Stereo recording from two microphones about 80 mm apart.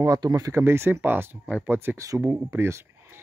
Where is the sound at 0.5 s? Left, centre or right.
Right.